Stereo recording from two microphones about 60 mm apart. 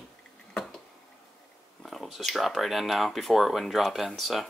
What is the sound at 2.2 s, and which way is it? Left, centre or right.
Speech, centre.